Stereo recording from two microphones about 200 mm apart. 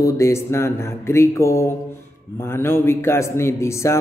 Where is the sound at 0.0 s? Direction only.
15° left (ahead or behind).